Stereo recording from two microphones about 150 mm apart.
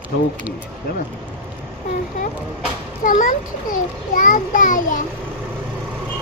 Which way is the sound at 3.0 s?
60° left (ahead or behind).